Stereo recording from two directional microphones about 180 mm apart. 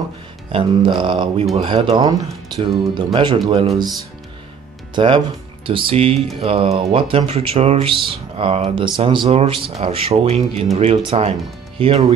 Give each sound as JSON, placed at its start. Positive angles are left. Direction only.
{"t": 0.5, "sound": "speech", "side_deg": -25}
{"t": 4.9, "sound": "speech", "side_deg": -25}